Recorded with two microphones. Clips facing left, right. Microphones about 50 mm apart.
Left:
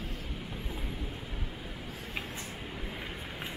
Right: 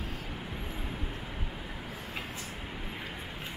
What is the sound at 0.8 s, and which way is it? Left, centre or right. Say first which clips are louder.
Vehicle: right 1 dB; right.